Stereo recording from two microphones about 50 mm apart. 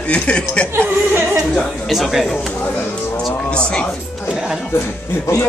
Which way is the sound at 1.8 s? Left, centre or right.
Centre.